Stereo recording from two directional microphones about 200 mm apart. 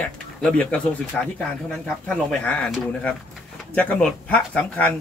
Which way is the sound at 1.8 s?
5° left (ahead or behind).